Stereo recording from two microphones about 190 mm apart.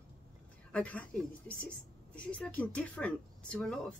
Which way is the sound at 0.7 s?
5° left (ahead or behind).